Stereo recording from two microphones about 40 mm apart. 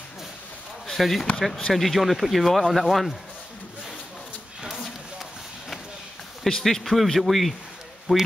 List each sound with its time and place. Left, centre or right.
0.8 s speech: centre
6.4 s speech: centre
8.1 s speech: centre